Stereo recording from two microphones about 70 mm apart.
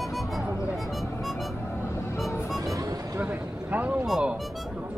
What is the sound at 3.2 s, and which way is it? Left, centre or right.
Speech, right.